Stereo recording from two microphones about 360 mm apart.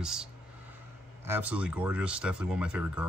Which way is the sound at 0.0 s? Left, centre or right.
Centre.